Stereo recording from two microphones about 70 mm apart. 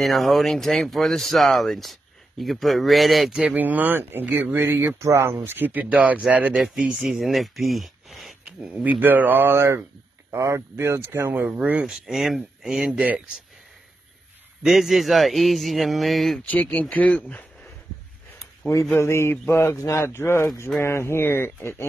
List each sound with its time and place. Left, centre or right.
0.0 s speech: centre
3.5 s speech: right
6.6 s speech: centre
8.5 s speech: centre; by 11.4 s right
11.4 s speech: right
11.8 s speech: centre
14.6 s speech: centre
16.4 s speech: left
18.9 s speech: left